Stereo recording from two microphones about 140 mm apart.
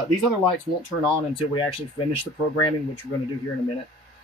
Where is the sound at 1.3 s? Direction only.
40° left (ahead or behind).